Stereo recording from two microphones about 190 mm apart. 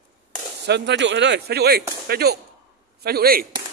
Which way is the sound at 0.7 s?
65° right (ahead or behind).